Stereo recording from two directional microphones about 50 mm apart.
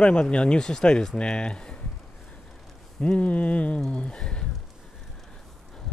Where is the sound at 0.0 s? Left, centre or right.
Centre.